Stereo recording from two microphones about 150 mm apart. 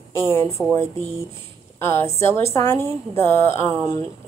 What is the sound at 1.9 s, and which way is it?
A woman's voice, 15° left (ahead or behind).